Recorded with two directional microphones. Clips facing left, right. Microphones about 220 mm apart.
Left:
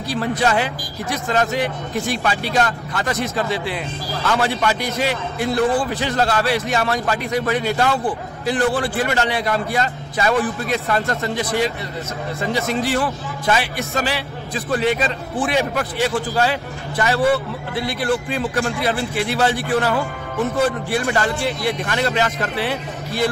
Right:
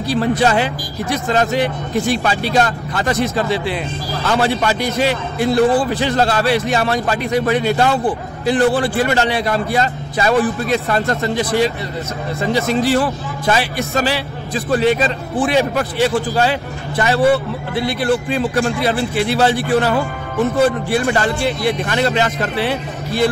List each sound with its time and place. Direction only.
0.1 s a man's voice: 30° right (ahead or behind)